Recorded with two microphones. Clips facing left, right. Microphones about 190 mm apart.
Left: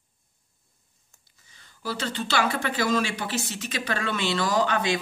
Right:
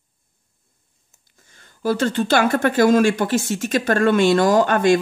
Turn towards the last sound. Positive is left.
turn(degrees=-50)  # may be behind; listen again after turning